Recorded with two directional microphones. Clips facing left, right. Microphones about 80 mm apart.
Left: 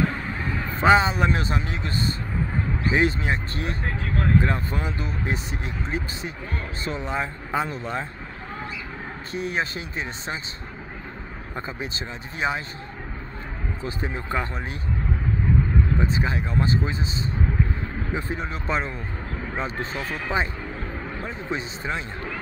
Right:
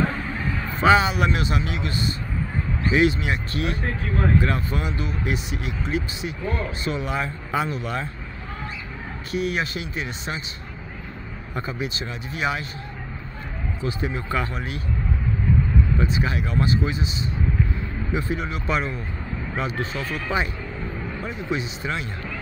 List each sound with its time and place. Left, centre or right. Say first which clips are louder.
0.8 s speech: even; left
9.3 s speech: right 2 dB; left
11.5 s speech: right 3 dB; left
13.8 s speech: right 3 dB; left
16.0 s speech: right 1 dB; left
18.1 s speech: right 4 dB; left
21.3 s speech: right 3 dB; left